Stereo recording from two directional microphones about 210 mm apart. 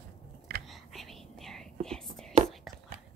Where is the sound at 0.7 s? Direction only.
Centre (ahead or behind).